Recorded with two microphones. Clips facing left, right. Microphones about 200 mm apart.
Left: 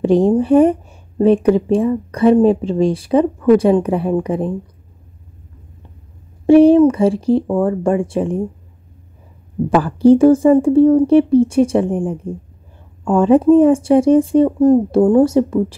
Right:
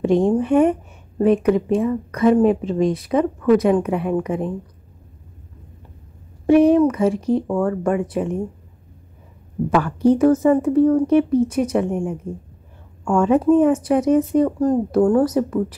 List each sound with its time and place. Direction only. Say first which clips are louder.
0.0 s speech: left 4 dB; 35° left (ahead or behind)
6.4 s speech: left 5 dB; 30° left (ahead or behind)
9.8 s speech: left 6 dB; 30° left (ahead or behind)